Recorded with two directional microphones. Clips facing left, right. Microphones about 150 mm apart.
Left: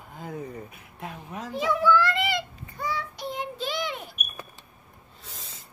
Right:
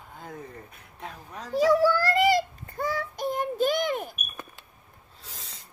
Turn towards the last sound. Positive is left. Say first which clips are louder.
# right 7 dB
turn(degrees=-50)  # may be behind; listen again after turning